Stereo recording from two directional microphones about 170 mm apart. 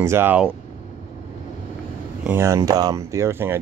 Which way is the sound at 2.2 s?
15° right (ahead or behind).